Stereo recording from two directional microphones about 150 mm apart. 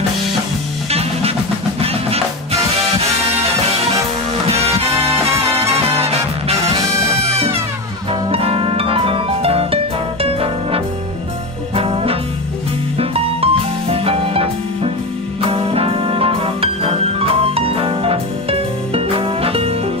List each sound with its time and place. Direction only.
0.8 s music: 40° right (ahead or behind)
4.5 s music: 40° right (ahead or behind)
8.1 s music: 40° right (ahead or behind)